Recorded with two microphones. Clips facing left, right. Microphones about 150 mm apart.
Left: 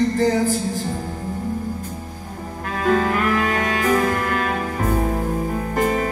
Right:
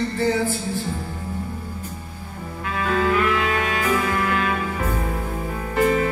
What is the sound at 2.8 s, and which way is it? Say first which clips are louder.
Music: left 2 dB; 45° left (ahead or behind).